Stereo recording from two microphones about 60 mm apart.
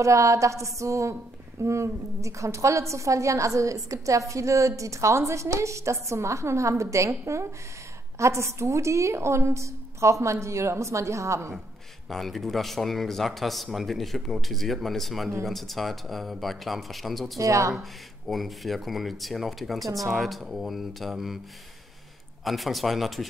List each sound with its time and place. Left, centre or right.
0.0 s a woman's voice: right
12.1 s speech: centre
17.4 s a woman's voice: right
18.3 s speech: centre
22.4 s speech: centre